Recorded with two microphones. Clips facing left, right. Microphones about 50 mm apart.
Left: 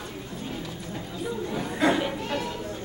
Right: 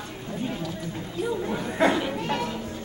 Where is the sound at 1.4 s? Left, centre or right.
Right.